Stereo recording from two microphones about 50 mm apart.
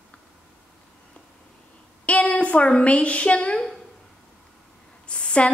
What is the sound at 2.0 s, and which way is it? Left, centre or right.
A woman's voice, left.